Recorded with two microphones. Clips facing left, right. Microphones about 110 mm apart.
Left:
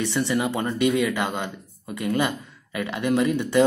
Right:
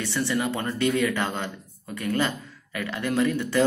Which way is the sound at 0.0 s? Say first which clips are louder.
Left 3 dB; 20° left (ahead or behind).